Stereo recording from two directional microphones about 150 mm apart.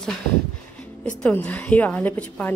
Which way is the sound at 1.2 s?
10° left (ahead or behind).